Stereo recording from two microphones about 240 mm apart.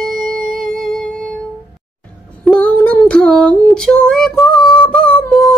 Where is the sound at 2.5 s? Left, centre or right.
Centre.